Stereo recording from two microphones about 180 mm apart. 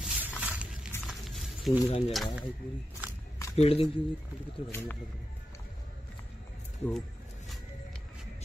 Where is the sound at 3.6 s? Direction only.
30° left (ahead or behind).